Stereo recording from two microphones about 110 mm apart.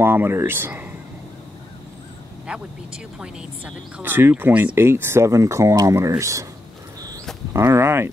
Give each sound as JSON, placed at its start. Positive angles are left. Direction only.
{"t": 0.0, "sound": "speech", "side_deg": -20}
{"t": 2.4, "sound": "speech", "side_deg": -10}
{"t": 7.5, "sound": "speech", "side_deg": -25}